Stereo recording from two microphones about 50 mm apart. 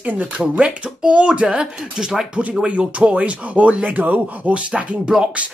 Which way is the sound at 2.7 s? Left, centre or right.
Right.